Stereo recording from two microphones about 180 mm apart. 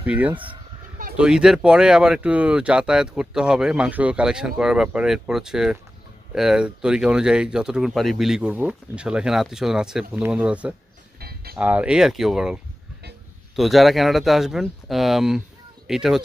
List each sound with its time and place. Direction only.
0.0 s speech: 10° right (ahead or behind)
11.1 s a sound: 60° right (ahead or behind)
11.5 s speech: 5° right (ahead or behind)
13.6 s speech: centre (ahead or behind)